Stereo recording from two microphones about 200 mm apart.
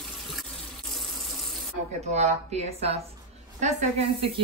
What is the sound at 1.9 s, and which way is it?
A woman's voice, 35° right (ahead or behind).